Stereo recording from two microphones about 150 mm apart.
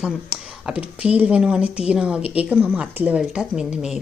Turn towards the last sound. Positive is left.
turn(degrees=-5)  # may be behind; listen again after turning